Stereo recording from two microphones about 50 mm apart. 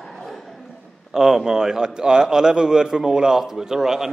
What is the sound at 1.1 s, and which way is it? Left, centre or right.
A man's voice, centre.